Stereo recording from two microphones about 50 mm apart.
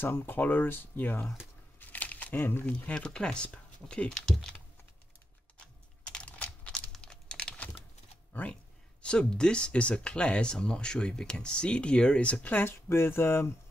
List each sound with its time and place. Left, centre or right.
0.0 s speech: left
1.8 s crumpling: left
2.6 s speech: left
6.0 s a sound: left
7.0 s crumpling: left
9.0 s speech: centre
12.4 s speech: left
12.9 s speech: left